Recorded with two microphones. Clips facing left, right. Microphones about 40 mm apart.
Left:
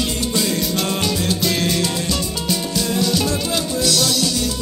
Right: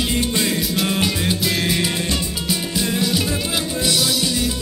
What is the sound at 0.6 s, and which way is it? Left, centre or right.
Music, centre.